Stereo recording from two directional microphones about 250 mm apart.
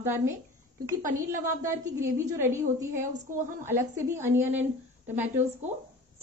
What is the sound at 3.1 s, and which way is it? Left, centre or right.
Speech, right.